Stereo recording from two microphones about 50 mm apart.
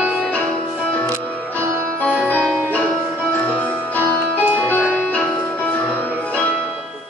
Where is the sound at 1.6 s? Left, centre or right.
Right.